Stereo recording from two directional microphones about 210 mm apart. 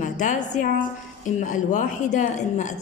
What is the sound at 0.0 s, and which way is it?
A woman's voice, 35° left (ahead or behind).